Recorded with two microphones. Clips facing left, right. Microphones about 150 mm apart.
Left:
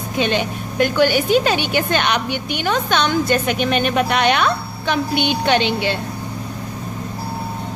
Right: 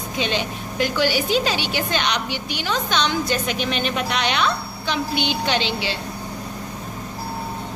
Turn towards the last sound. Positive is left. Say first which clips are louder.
# left 6 dB
turn(degrees=55)  # may be behind; listen again after turning